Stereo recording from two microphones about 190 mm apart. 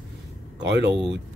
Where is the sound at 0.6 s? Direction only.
65° right (ahead or behind).